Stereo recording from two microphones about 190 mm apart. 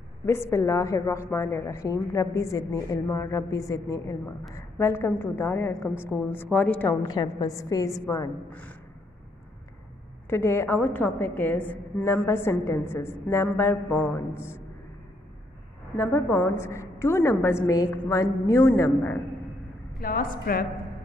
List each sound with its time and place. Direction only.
0.3 s a woman's voice: 15° left (ahead or behind)
7.1 s a woman's voice: 20° left (ahead or behind)
10.3 s a woman's voice: 15° left (ahead or behind)
16.0 s a woman's voice: 10° left (ahead or behind)
20.0 s a woman's voice: 50° left (ahead or behind)